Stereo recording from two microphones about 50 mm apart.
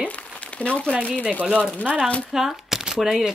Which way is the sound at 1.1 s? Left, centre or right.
Right.